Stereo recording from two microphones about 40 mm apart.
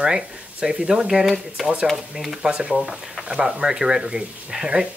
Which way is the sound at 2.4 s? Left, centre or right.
Centre.